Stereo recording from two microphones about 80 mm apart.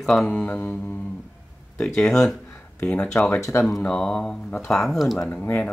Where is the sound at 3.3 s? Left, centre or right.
Left.